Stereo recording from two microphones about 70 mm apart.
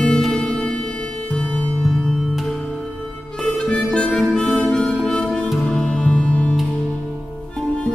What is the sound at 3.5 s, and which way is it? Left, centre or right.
Harmonica, centre.